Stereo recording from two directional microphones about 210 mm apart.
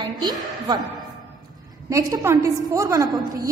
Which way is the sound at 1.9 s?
15° right (ahead or behind).